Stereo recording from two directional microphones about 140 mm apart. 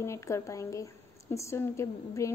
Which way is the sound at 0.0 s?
20° left (ahead or behind).